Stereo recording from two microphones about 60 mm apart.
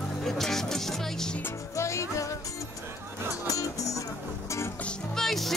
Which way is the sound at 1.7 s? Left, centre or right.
Left.